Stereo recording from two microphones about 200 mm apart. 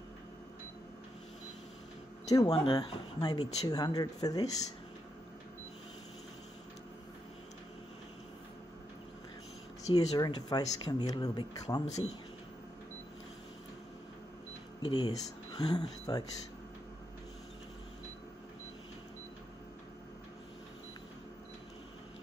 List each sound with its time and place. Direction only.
2.5 s speech: 25° left (ahead or behind)
9.9 s speech: 20° left (ahead or behind)
11.8 s speech: 30° left (ahead or behind)
14.8 s speech: 20° left (ahead or behind)